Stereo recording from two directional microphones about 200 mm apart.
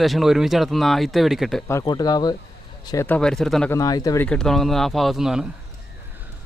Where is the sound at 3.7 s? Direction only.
15° left (ahead or behind); by 5.5 s 5° right (ahead or behind).